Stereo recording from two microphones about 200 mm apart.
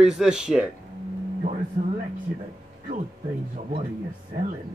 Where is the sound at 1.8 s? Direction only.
40° right (ahead or behind).